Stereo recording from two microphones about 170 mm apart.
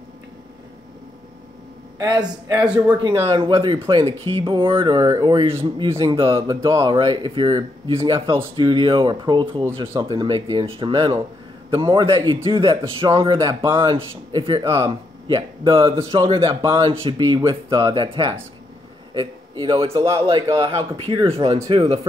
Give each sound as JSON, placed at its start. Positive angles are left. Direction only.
{"t": 2.0, "sound": "speech", "side_deg": -25}
{"t": 2.6, "sound": "speech", "side_deg": -5}
{"t": 3.3, "sound": "speech", "side_deg": -30}
{"t": 19.6, "sound": "speech", "side_deg": -30}
{"t": 19.9, "sound": "speech", "side_deg": -15}